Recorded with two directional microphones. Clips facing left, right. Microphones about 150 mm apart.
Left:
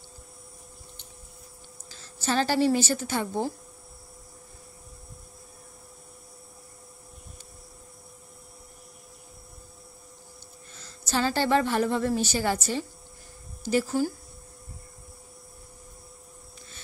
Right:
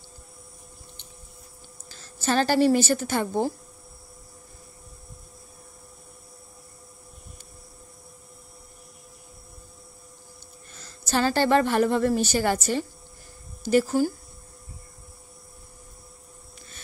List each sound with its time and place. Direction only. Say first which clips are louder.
2.2 s a woman's voice: right 3 dB; 55° right (ahead or behind)
11.1 s a woman's voice: right 3 dB; 55° right (ahead or behind)